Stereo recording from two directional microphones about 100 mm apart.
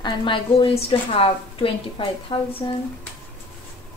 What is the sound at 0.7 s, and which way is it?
A woman's voice, 75° left (ahead or behind).